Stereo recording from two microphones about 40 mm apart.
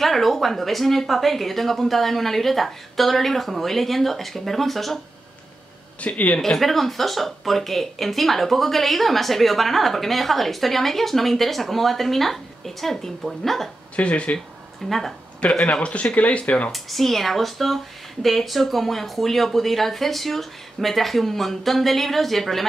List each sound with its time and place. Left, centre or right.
0.0 s speech: centre
5.9 s speech: left
6.4 s speech: centre
13.9 s speech: left
14.9 s speech: centre
15.6 s speech: left
16.7 s speech: centre